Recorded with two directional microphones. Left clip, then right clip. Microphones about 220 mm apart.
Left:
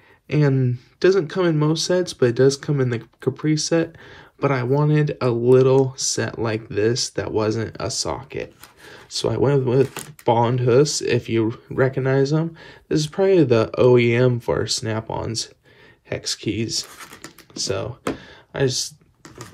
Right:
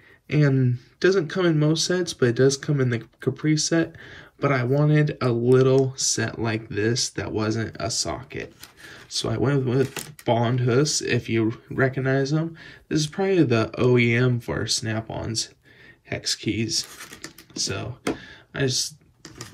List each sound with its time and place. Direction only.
0.3 s speech: 10° left (ahead or behind)